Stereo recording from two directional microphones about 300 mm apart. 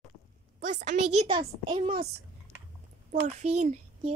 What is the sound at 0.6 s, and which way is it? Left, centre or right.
A child's voice, right.